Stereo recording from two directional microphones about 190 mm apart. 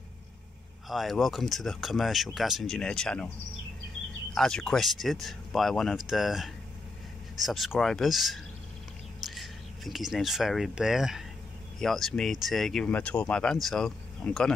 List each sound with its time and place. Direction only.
0.8 s speech: centre (ahead or behind)
4.4 s speech: 5° left (ahead or behind)